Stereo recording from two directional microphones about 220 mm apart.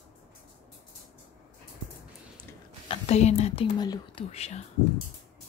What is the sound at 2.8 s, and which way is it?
Speech, 25° left (ahead or behind).